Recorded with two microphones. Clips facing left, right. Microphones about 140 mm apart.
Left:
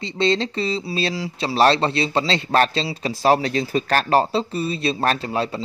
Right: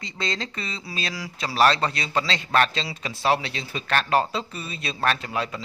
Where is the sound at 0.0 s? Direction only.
30° left (ahead or behind).